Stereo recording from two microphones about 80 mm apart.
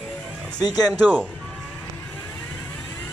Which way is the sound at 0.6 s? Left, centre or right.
Left.